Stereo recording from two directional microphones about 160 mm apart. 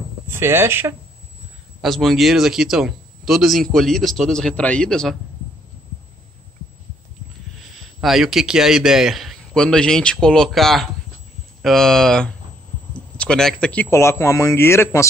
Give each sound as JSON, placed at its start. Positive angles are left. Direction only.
{"t": 0.3, "sound": "speech", "side_deg": -15}
{"t": 1.8, "sound": "speech", "side_deg": 0}
{"t": 8.0, "sound": "speech", "side_deg": 0}